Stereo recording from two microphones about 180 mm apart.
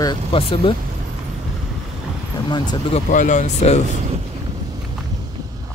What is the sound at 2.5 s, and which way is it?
Speech, 25° left (ahead or behind).